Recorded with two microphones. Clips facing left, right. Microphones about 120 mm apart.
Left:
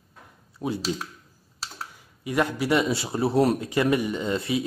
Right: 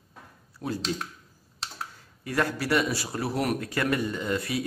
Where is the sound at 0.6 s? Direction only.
20° left (ahead or behind).